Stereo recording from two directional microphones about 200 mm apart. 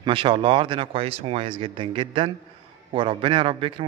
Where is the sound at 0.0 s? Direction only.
25° right (ahead or behind).